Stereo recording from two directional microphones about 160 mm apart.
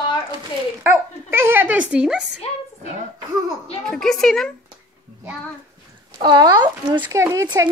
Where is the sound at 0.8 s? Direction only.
15° right (ahead or behind).